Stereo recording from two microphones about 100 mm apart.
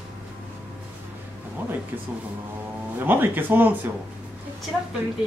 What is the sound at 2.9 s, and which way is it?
Speech, 20° right (ahead or behind).